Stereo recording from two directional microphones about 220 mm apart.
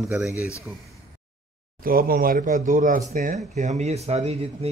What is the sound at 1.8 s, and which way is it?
Speech, 40° right (ahead or behind).